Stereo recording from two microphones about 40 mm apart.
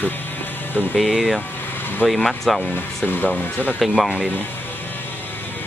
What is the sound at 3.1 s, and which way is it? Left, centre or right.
Speech, left.